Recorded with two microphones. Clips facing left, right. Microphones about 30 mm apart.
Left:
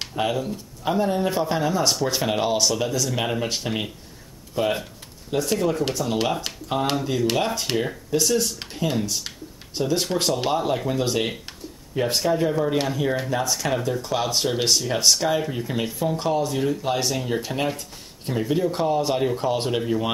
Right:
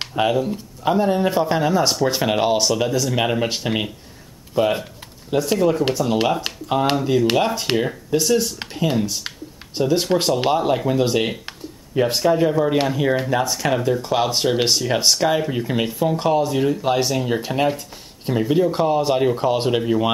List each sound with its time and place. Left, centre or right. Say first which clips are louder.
0.0 s a sound: right 5 dB; right
0.3 s speech: right 6 dB; centre
8.5 s speech: right 4 dB; centre